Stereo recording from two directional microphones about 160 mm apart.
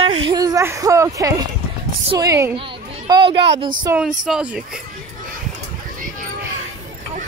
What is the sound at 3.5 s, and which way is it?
Speech, 30° right (ahead or behind).